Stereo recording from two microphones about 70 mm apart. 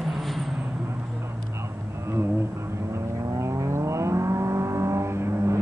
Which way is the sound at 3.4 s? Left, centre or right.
Right.